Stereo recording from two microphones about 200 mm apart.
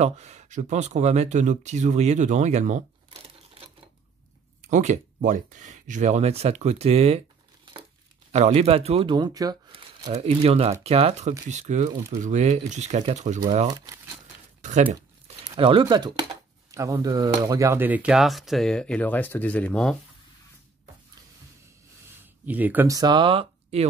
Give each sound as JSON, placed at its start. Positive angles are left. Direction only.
{"t": 0.0, "sound": "speech", "side_deg": -35}
{"t": 8.3, "sound": "speech", "side_deg": -30}
{"t": 13.7, "sound": "speech", "side_deg": -20}
{"t": 14.6, "sound": "speech", "side_deg": -35}
{"t": 15.0, "sound": "tearing", "side_deg": -15}
{"t": 15.6, "sound": "speech", "side_deg": -25}
{"t": 22.2, "sound": "speech", "side_deg": -10}